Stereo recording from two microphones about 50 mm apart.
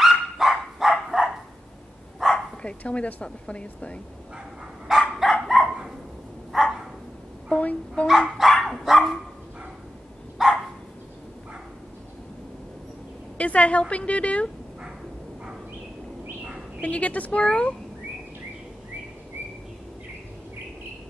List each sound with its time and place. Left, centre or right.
0.0 s dog: centre
2.2 s bow-wow: centre
2.6 s a woman's voice: left
4.9 s dog: centre
7.5 s dog: left
8.5 s dog: centre
10.4 s dog: centre
13.4 s a woman's voice: left
16.8 s a woman's voice: left